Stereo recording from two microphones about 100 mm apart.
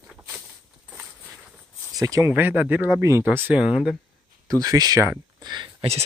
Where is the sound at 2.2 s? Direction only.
20° right (ahead or behind).